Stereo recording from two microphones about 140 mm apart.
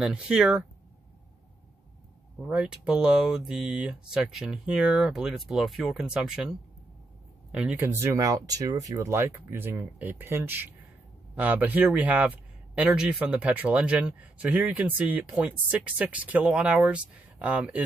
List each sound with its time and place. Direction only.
0.0 s speech: 5° right (ahead or behind)
2.4 s speech: 5° right (ahead or behind)
7.5 s speech: 10° right (ahead or behind)